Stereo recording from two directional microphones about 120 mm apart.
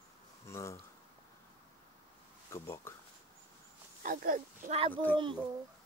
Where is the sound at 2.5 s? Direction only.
20° left (ahead or behind).